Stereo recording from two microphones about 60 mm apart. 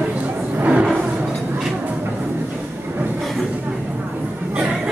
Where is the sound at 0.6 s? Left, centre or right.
Right.